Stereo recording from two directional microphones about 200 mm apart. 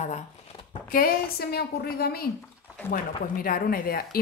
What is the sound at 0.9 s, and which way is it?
Speech, 50° left (ahead or behind).